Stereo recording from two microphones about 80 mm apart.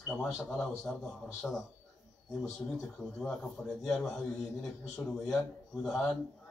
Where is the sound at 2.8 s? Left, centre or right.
Centre.